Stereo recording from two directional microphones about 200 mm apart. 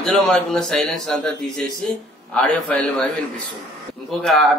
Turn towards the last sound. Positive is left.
turn(degrees=0)  # may be behind; listen again after turning